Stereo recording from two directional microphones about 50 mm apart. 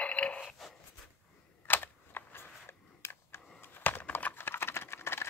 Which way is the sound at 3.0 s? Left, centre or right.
Left.